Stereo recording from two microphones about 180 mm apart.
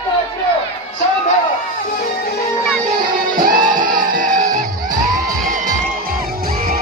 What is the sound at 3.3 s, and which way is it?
Music, 50° right (ahead or behind).